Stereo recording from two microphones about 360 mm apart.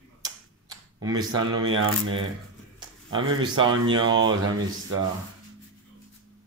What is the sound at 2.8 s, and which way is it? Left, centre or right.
Speech, centre.